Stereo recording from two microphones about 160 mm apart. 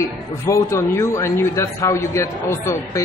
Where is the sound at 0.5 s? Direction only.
20° left (ahead or behind).